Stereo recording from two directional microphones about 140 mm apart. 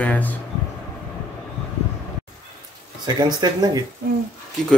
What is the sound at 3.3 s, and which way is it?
Speech, 30° right (ahead or behind).